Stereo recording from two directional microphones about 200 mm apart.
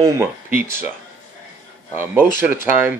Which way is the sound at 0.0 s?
15° right (ahead or behind).